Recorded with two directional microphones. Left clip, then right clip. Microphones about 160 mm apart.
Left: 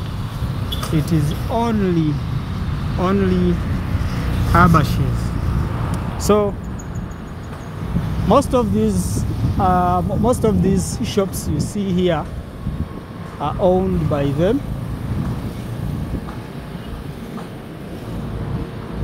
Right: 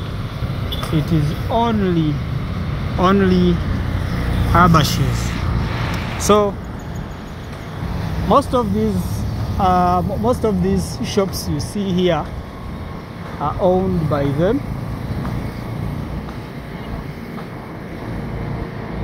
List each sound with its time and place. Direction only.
0.9 s speech: 20° left (ahead or behind)
3.0 s speech: centre (ahead or behind)
4.5 s speech: 15° left (ahead or behind)
6.2 s speech: 10° left (ahead or behind)
8.3 s speech: 30° left (ahead or behind)
9.6 s speech: 15° left (ahead or behind)
10.2 s speech: 25° left (ahead or behind)
13.4 s speech: 25° left (ahead or behind)